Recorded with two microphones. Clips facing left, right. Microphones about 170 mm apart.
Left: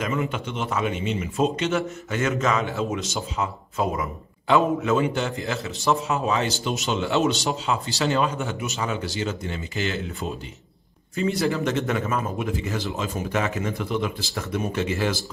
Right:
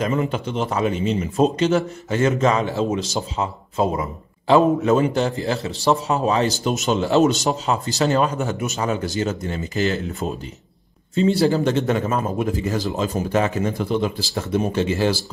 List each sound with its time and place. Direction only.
0.0 s a man's voice: 35° right (ahead or behind)